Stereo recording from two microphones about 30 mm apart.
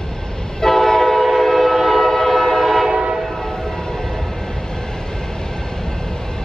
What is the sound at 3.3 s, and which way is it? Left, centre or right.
Train, centre.